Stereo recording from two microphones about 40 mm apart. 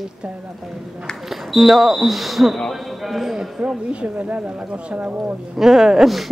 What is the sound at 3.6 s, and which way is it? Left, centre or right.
A woman's voice, right.